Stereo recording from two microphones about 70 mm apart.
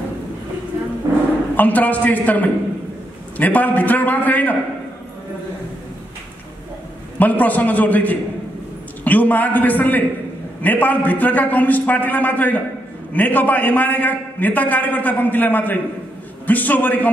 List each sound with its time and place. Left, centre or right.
1.6 s a man's voice: left
7.2 s a man's voice: left